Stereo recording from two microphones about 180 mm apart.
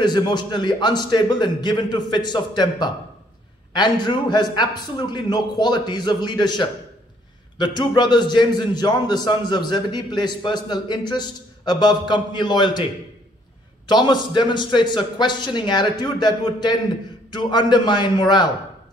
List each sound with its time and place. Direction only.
0.0 s a man's voice: 25° left (ahead or behind)
13.8 s a man's voice: 25° left (ahead or behind)